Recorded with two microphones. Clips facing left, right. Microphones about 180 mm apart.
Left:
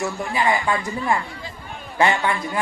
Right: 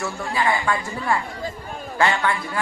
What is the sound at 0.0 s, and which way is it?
A woman's voice, 20° left (ahead or behind).